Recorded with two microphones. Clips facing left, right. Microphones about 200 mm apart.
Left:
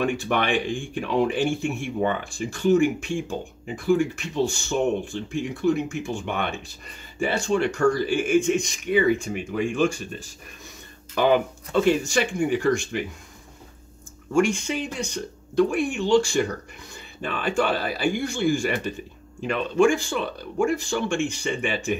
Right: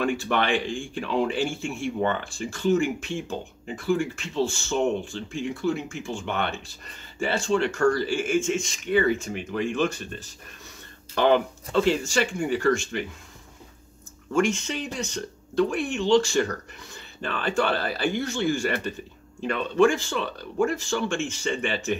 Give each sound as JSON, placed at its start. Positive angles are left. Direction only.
{"t": 0.0, "sound": "speech", "side_deg": 15}
{"t": 14.3, "sound": "speech", "side_deg": 15}